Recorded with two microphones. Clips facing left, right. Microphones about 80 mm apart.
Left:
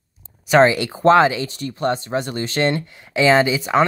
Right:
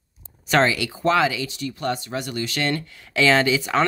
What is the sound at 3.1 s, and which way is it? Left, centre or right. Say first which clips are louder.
Speech: left 3 dB; left.